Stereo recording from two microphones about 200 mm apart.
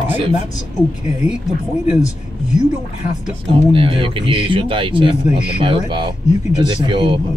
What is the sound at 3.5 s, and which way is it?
Speech, 25° right (ahead or behind).